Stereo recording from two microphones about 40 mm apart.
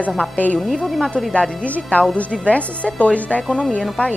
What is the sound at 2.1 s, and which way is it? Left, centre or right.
A woman's voice, left.